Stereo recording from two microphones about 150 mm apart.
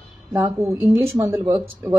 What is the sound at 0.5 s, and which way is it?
Speech, 15° right (ahead or behind).